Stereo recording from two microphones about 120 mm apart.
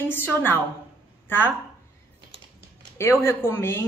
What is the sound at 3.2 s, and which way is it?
Speech, 20° left (ahead or behind).